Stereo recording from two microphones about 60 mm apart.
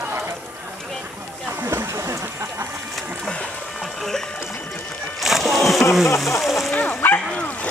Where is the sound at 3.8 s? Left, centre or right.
Centre.